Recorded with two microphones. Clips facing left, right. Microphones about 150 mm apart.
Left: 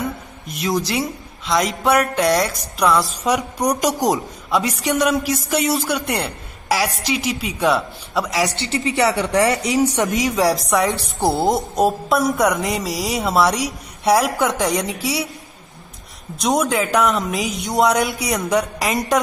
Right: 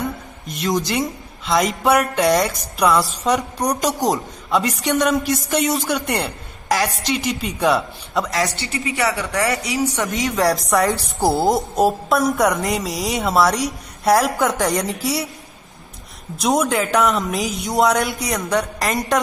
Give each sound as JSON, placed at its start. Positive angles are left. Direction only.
{"t": 0.0, "sound": "a woman's voice", "side_deg": 0}
{"t": 8.5, "sound": "a woman's voice", "side_deg": 25}
{"t": 10.3, "sound": "a woman's voice", "side_deg": 0}
{"t": 16.3, "sound": "a woman's voice", "side_deg": 0}